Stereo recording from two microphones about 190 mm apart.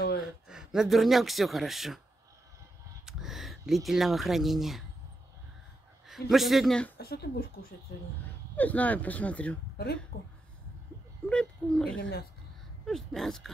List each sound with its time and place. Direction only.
0.5 s speech: 5° right (ahead or behind)
3.1 s speech: centre (ahead or behind)
6.0 s speech: centre (ahead or behind)
7.0 s speech: 55° left (ahead or behind)
8.5 s speech: 10° left (ahead or behind)
10.1 s speech: 55° left (ahead or behind)
11.2 s speech: 5° left (ahead or behind)
12.0 s speech: 55° left (ahead or behind)
12.8 s speech: centre (ahead or behind)